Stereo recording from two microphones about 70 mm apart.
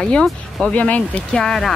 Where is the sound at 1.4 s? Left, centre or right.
Centre.